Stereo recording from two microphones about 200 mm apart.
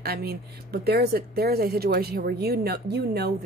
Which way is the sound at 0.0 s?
50° right (ahead or behind).